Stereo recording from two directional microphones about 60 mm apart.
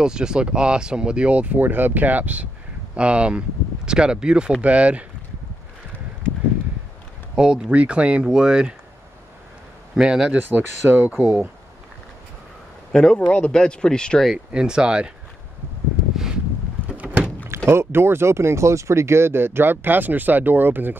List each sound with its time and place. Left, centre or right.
0.0 s speech: centre
7.3 s speech: centre
9.9 s speech: centre
10.3 s speech: right
12.9 s speech: centre
14.3 s speech: centre
16.9 s vehicle: right
17.6 s speech: right